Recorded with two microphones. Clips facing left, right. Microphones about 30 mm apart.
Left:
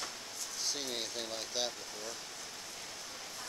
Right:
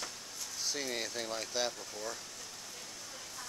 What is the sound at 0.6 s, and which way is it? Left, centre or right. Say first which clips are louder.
Speech: right 2 dB; centre.